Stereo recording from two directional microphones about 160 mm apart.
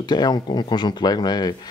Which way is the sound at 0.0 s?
25° left (ahead or behind).